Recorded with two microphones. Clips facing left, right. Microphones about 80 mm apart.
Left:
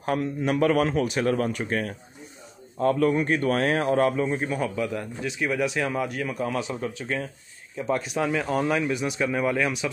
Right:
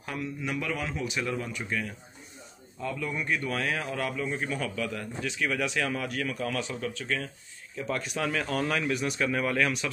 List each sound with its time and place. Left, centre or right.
0.0 s a man's voice: left
3.2 s a man's voice: left; by 9.8 s centre